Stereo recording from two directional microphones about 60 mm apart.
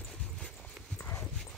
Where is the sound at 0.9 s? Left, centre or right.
Left.